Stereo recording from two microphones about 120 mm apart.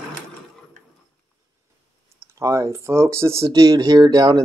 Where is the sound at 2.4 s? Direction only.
25° right (ahead or behind).